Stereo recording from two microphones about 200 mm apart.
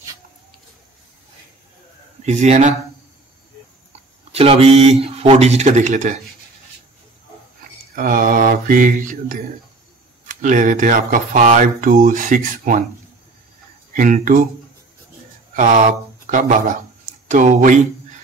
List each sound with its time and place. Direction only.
2.2 s speech: 35° right (ahead or behind)
4.3 s speech: 30° right (ahead or behind)
7.9 s mantra: 45° right (ahead or behind)
10.2 s speech: 40° right (ahead or behind)
13.9 s speech: 40° right (ahead or behind)
16.3 s speech: 40° right (ahead or behind)